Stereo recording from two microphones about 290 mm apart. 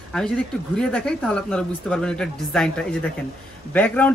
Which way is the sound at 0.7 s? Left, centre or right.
Centre.